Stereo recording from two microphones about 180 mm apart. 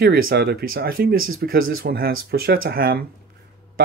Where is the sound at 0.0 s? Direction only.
60° right (ahead or behind).